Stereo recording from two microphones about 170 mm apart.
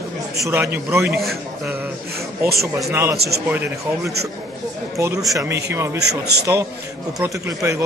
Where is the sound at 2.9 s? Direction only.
15° right (ahead or behind).